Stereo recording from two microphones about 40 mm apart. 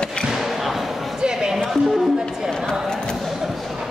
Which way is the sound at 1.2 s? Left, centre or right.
Centre.